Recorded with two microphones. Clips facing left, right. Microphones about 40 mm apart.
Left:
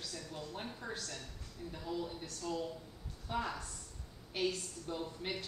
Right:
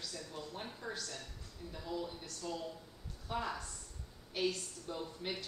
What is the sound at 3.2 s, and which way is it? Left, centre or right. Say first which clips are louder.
Speech: left 1 dB; centre.